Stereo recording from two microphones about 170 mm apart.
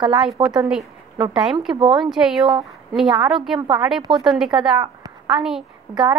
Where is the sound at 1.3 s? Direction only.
5° right (ahead or behind).